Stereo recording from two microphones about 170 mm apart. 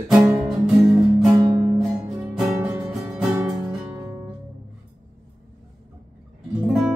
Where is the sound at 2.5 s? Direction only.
15° right (ahead or behind).